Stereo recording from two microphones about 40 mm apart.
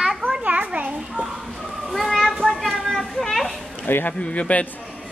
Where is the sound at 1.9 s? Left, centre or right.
Centre.